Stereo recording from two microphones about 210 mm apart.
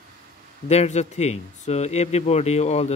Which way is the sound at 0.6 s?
30° left (ahead or behind).